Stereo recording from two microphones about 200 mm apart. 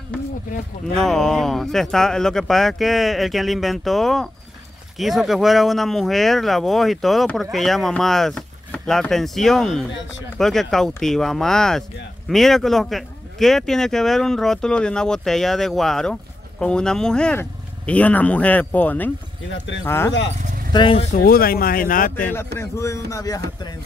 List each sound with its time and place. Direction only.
1.0 s speech: centre (ahead or behind)
19.5 s speech: 65° left (ahead or behind)
19.8 s speech: 15° left (ahead or behind)
20.7 s speech: 25° left (ahead or behind)
21.1 s speech: 50° left (ahead or behind)
22.6 s speech: 15° left (ahead or behind)